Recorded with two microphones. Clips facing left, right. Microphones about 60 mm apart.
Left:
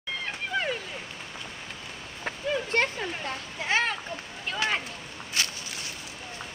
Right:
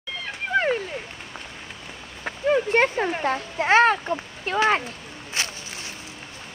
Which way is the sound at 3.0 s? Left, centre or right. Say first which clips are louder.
Right 9 dB; right.